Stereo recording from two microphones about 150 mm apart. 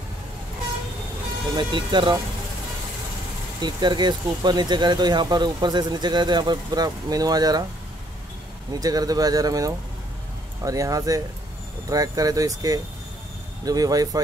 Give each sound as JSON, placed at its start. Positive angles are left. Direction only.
{"t": 1.6, "sound": "speech", "side_deg": -30}
{"t": 3.6, "sound": "speech", "side_deg": -30}
{"t": 8.7, "sound": "speech", "side_deg": -25}